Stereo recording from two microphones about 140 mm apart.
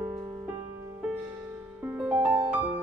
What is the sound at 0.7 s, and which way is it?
Music, 15° right (ahead or behind).